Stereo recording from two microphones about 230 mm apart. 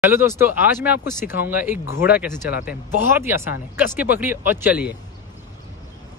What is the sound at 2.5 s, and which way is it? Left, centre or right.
Speech, left.